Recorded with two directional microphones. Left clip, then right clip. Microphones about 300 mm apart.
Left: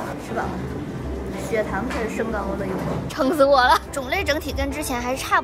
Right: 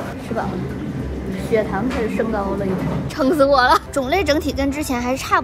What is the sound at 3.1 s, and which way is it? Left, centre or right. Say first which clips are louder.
A woman's voice: right 2 dB; centre.